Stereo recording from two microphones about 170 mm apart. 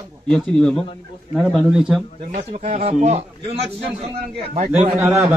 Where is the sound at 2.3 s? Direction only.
40° right (ahead or behind).